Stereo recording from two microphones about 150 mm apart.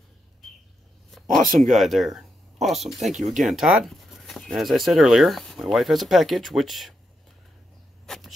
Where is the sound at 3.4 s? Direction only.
Centre (ahead or behind).